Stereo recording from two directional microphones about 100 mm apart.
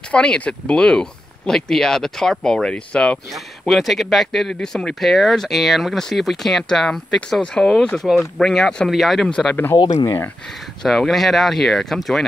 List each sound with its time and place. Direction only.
0.1 s speech: 10° left (ahead or behind)
3.6 s speech: centre (ahead or behind)
10.8 s speech: centre (ahead or behind)